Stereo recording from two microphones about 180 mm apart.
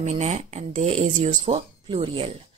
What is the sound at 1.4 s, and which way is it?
Speech, 30° right (ahead or behind).